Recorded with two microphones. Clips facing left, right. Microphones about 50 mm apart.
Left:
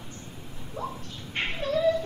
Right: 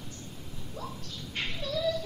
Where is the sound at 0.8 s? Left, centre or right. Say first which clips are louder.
Left 6 dB; left.